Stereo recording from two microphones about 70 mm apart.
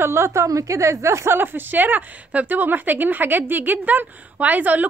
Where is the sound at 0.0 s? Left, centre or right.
Right.